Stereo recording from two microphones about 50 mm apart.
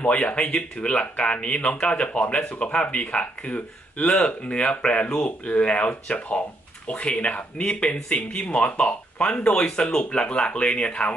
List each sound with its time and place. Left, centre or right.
0.0 s speech: left